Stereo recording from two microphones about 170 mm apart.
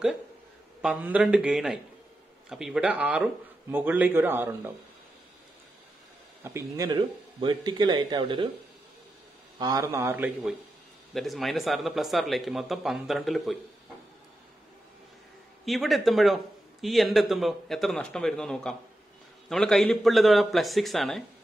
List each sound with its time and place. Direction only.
0.8 s a man's voice: 10° right (ahead or behind)
6.4 s speech: 20° right (ahead or behind)
9.6 s a man's voice: 20° right (ahead or behind)
11.1 s a man's voice: centre (ahead or behind)
15.6 s a man's voice: centre (ahead or behind)